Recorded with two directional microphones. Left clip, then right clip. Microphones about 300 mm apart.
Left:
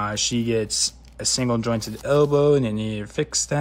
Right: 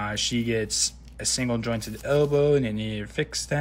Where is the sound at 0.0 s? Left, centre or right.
Centre.